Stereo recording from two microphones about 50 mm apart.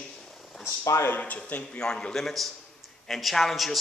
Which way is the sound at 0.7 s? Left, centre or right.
Left.